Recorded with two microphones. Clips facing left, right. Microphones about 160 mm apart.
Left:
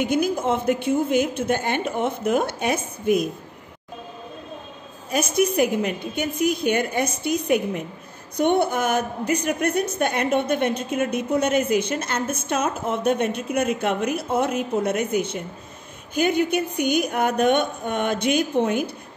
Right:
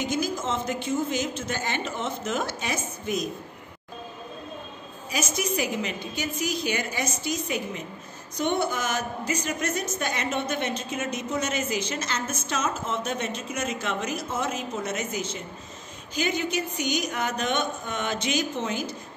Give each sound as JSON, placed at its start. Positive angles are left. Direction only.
{"t": 0.0, "sound": "a woman's voice", "side_deg": 60}
{"t": 5.1, "sound": "a woman's voice", "side_deg": 55}